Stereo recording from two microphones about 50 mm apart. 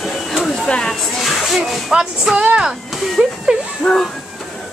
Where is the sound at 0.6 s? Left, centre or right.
Centre.